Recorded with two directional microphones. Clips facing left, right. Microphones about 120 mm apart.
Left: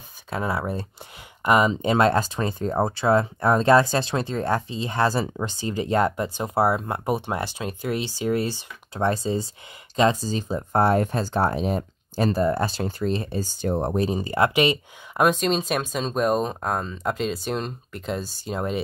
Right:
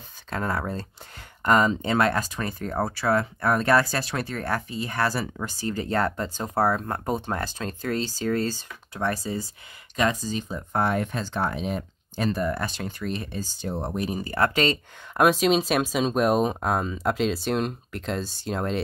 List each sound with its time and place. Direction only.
0.3 s speech: 10° left (ahead or behind); by 13.4 s 30° left (ahead or behind)
13.4 s speech: 50° left (ahead or behind)
13.9 s speech: 25° left (ahead or behind)
15.1 s speech: 5° right (ahead or behind)